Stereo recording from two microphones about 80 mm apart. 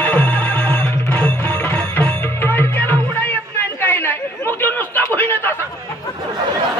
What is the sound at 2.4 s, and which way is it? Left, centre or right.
Music, left.